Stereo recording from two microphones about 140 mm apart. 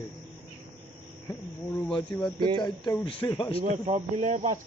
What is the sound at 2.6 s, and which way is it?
Speech, 30° left (ahead or behind).